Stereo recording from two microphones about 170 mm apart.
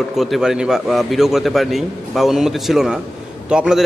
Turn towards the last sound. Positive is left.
turn(degrees=-5)  # may be behind; listen again after turning